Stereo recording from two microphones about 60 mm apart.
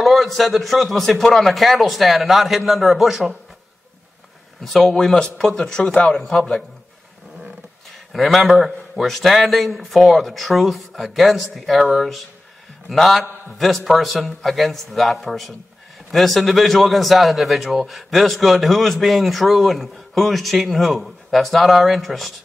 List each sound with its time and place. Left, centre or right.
0.0 s a man's voice: centre
4.7 s a man's voice: centre
8.1 s a man's voice: centre